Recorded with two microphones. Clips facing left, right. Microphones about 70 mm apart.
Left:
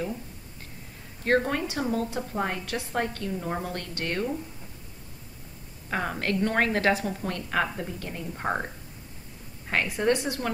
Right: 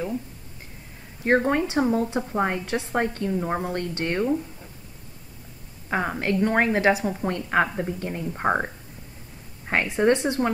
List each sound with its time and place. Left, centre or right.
1.2 s speech: right
5.9 s speech: centre